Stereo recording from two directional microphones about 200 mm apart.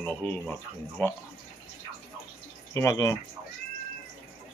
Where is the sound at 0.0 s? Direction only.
10° left (ahead or behind).